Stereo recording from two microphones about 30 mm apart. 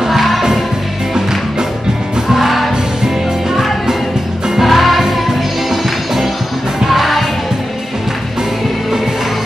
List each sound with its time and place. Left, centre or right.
0.0 s music: centre
2.2 s music: centre
4.6 s music: centre